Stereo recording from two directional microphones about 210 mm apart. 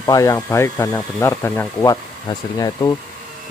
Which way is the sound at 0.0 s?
15° left (ahead or behind).